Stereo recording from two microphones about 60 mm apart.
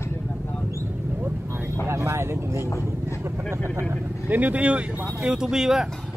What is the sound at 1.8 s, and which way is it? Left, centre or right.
Speech, right.